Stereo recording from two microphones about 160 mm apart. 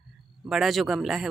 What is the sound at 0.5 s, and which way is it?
Speech, centre (ahead or behind).